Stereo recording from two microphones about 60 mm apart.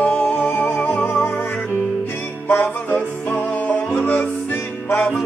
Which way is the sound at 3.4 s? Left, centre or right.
Left.